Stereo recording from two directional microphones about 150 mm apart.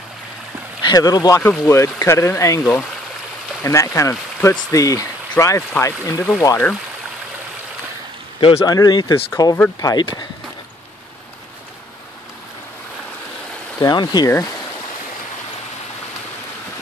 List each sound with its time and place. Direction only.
0.8 s speech: 25° left (ahead or behind)
1.4 s speech: 5° left (ahead or behind)
1.7 s speech: 20° left (ahead or behind)
3.6 s speech: 20° left (ahead or behind)
8.5 s speech: 25° left (ahead or behind)
13.7 s speech: 25° left (ahead or behind)